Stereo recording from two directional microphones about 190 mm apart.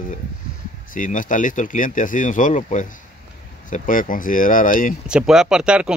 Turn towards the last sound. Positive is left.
turn(degrees=-5)  # may be behind; listen again after turning